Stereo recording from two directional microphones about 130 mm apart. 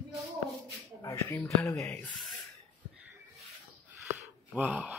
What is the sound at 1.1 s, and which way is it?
Speech, 20° left (ahead or behind).